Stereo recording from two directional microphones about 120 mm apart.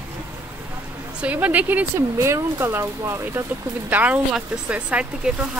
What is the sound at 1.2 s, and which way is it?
Speech, 10° right (ahead or behind).